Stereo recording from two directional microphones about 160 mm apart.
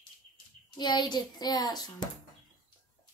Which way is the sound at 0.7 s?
25° left (ahead or behind).